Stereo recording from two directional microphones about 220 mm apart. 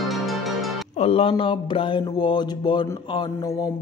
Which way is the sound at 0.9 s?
25° left (ahead or behind).